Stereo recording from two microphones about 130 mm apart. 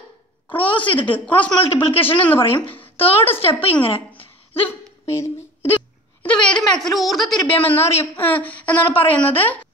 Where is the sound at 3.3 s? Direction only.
50° left (ahead or behind).